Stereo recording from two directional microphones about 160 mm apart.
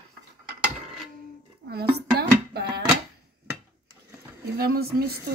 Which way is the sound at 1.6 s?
90° right.